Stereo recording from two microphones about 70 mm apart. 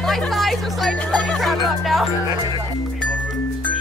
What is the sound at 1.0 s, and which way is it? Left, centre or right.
Speech, centre.